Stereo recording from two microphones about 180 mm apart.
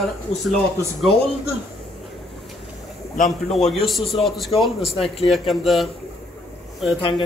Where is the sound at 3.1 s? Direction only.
40° left (ahead or behind).